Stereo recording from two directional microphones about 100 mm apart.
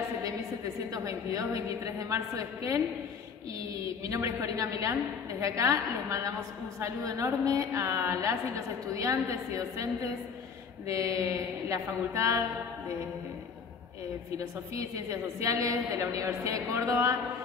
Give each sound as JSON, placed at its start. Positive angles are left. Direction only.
{"t": 0.9, "sound": "a woman's voice", "side_deg": -35}
{"t": 4.0, "sound": "a woman's voice", "side_deg": -30}
{"t": 10.9, "sound": "a woman's voice", "side_deg": -30}
{"t": 14.7, "sound": "a woman's voice", "side_deg": -30}